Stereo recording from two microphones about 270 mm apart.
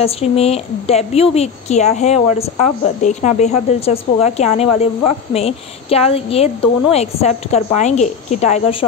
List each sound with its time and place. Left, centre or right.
0.0 s a woman's voice: left